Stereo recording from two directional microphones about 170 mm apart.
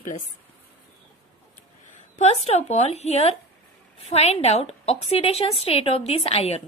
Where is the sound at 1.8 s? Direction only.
45° left (ahead or behind).